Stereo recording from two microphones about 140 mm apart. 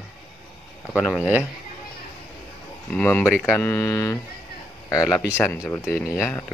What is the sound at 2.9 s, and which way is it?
Speech, 5° left (ahead or behind).